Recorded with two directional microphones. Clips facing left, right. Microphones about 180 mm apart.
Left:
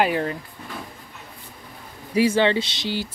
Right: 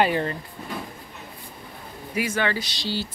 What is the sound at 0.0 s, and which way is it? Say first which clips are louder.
Speech: even; 5° left (ahead or behind).